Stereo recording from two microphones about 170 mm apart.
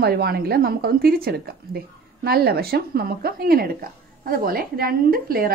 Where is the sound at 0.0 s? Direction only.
70° right (ahead or behind).